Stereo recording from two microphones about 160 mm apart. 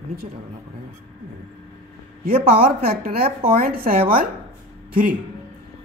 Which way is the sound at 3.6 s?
65° right (ahead or behind).